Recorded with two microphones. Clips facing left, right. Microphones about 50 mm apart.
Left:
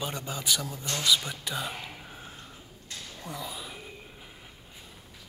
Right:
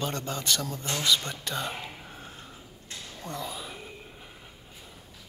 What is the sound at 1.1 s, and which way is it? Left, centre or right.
Speech, centre.